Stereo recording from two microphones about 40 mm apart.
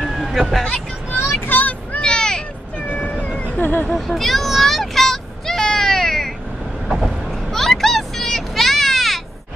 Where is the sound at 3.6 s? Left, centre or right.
Left.